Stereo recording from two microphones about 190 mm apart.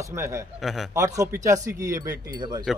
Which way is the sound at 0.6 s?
Centre (ahead or behind).